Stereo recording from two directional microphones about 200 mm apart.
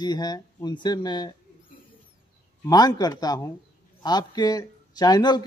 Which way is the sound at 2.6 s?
20° left (ahead or behind).